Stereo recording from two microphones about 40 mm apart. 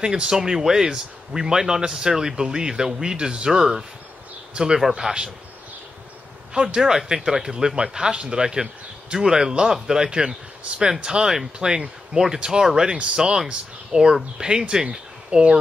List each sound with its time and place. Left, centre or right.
0.0 s speech: centre
4.9 s speech: centre
6.5 s speech: right
7.5 s speech: right
10.7 s speech: right
11.0 s speech: centre